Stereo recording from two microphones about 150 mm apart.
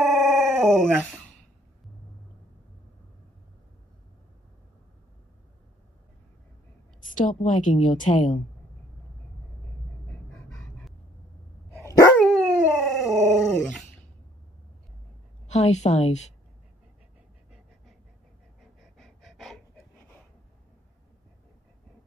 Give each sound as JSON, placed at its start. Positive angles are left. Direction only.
{"t": 0.0, "sound": "dog", "side_deg": 0}
{"t": 7.2, "sound": "a woman's voice", "side_deg": 60}
{"t": 12.2, "sound": "dog", "side_deg": 0}
{"t": 15.4, "sound": "a woman's voice", "side_deg": 50}
{"t": 18.6, "sound": "pant", "side_deg": 0}